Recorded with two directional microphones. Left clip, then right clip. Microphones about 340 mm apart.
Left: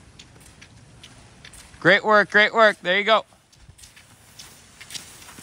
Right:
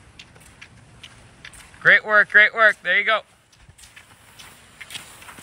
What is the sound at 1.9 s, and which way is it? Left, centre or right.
Speech, centre.